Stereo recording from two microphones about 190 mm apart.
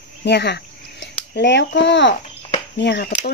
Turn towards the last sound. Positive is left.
turn(degrees=55)  # may be behind; listen again after turning